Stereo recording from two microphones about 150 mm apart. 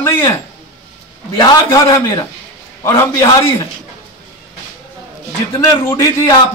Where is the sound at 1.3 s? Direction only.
25° left (ahead or behind).